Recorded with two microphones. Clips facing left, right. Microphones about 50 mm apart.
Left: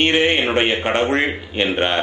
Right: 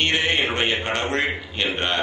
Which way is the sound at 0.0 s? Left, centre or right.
Left.